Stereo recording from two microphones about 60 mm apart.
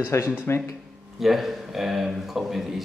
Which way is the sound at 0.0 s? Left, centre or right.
Left.